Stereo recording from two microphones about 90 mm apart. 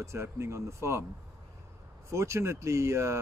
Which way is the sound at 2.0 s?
30° right (ahead or behind).